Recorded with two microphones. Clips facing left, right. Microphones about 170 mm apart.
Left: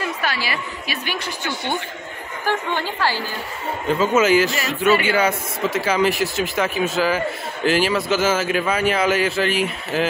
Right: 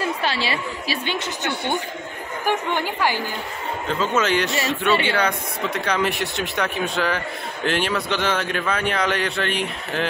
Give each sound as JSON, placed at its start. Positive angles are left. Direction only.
{"t": 0.0, "sound": "a woman's voice", "side_deg": -25}
{"t": 4.0, "sound": "a man's voice", "side_deg": 10}